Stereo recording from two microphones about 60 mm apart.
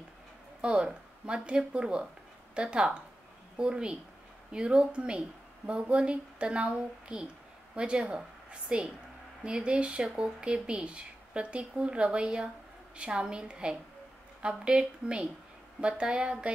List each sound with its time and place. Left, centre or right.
0.6 s a woman's voice: centre